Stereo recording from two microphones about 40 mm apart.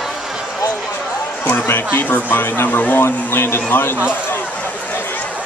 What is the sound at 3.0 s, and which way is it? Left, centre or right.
Speech, left.